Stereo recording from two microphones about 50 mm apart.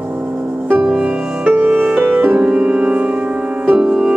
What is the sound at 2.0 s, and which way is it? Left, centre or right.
Music, right.